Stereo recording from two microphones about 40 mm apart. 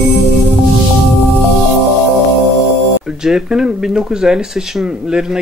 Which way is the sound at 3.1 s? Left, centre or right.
Centre.